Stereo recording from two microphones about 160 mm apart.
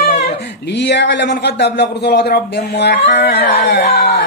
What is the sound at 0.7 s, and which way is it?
Speech, 90° left.